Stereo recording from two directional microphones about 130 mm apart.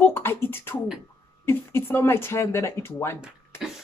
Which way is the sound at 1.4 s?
20° left (ahead or behind).